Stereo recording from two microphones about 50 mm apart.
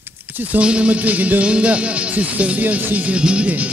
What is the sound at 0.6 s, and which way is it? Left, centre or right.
Speech, right.